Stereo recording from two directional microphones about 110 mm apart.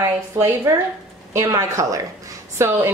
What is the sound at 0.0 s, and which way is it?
A woman's voice, 25° right (ahead or behind).